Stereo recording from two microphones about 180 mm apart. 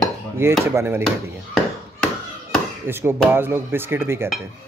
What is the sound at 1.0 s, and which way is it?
Speech, centre (ahead or behind).